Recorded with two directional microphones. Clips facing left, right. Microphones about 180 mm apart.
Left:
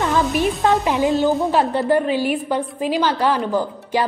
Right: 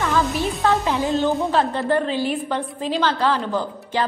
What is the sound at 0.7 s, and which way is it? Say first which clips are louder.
A woman's voice: left 2 dB; 15° left (ahead or behind).